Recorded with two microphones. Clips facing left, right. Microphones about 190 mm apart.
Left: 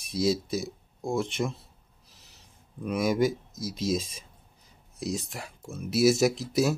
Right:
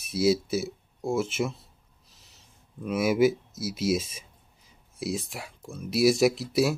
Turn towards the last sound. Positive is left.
turn(degrees=0)  # may be behind; listen again after turning